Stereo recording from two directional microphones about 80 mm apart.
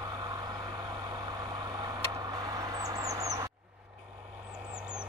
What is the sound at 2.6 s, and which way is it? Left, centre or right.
Bird, right.